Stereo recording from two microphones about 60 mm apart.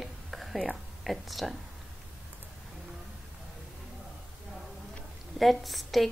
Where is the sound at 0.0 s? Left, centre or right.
Centre.